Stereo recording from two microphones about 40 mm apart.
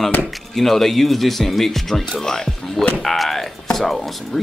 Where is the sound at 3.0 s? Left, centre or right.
Centre.